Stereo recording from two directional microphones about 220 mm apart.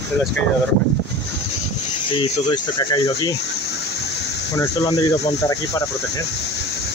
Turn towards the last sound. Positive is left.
turn(degrees=15)  # may be behind; listen again after turning